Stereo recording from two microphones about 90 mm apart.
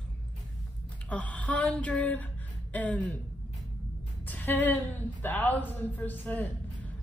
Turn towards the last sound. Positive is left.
turn(degrees=15)  # may be behind; listen again after turning